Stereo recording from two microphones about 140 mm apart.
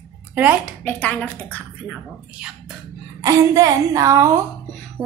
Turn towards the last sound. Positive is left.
turn(degrees=-25)  # may be behind; listen again after turning